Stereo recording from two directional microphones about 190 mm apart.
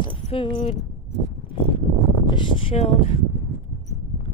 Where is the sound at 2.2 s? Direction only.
25° left (ahead or behind).